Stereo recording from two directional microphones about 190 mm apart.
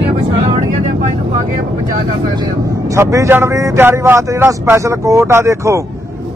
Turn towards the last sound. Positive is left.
turn(degrees=-15)  # may be behind; listen again after turning